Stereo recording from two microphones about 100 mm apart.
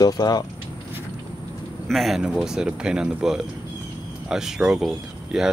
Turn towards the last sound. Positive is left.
turn(degrees=-5)  # may be behind; listen again after turning